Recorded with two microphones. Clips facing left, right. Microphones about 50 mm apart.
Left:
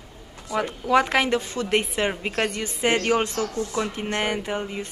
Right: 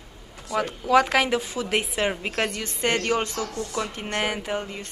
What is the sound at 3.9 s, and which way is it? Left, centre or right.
A woman's voice, centre.